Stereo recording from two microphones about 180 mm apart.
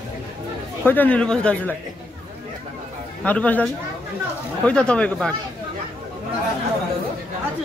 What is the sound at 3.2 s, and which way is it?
Speech, 10° left (ahead or behind).